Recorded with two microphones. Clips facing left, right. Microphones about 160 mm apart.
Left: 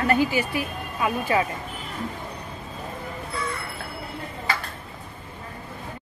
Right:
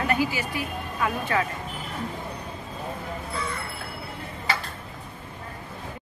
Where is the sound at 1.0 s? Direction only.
15° left (ahead or behind).